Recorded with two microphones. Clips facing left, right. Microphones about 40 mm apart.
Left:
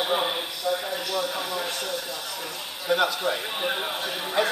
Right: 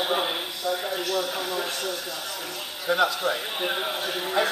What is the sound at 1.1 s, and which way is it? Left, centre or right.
Speech, centre.